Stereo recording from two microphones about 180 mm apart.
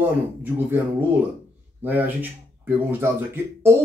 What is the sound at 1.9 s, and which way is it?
Speech, 10° right (ahead or behind).